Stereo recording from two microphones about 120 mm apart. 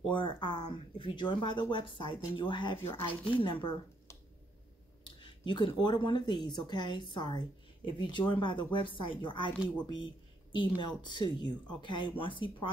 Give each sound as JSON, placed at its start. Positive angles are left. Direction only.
{"t": 0.1, "sound": "a woman's voice", "side_deg": 40}
{"t": 2.8, "sound": "speech", "side_deg": 20}
{"t": 3.3, "sound": "speech", "side_deg": 40}
{"t": 5.2, "sound": "a woman's voice", "side_deg": 40}
{"t": 10.5, "sound": "a woman's voice", "side_deg": 40}